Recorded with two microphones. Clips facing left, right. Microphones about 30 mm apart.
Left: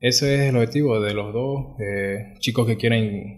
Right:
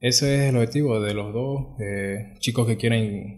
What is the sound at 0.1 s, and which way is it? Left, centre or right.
Speech, centre.